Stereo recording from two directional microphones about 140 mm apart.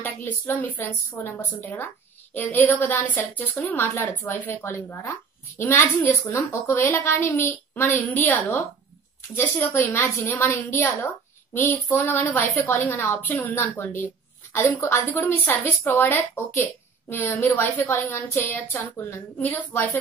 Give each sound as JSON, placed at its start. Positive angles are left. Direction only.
{"t": 0.0, "sound": "a woman's voice", "side_deg": 15}